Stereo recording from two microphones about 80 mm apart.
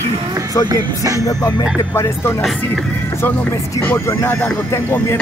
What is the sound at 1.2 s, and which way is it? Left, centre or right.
Speech, left.